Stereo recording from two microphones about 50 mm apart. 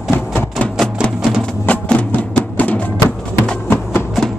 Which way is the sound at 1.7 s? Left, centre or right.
Left.